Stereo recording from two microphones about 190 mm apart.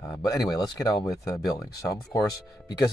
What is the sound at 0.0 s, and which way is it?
Speech, 20° left (ahead or behind).